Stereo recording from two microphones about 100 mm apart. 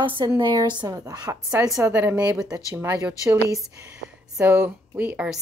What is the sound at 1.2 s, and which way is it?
Speech, 10° right (ahead or behind).